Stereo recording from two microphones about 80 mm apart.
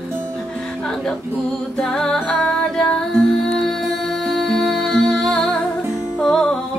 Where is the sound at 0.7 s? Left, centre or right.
Centre.